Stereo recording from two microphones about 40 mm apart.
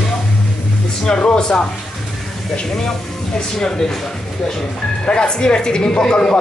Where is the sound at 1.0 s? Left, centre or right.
Left.